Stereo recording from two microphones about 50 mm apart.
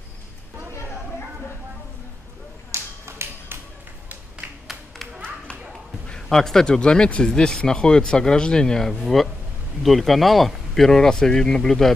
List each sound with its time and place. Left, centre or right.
2.7 s finger snapping: right
4.4 s a sound: right
6.2 s speech: centre